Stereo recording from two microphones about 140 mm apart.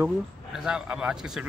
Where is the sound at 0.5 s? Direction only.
5° right (ahead or behind).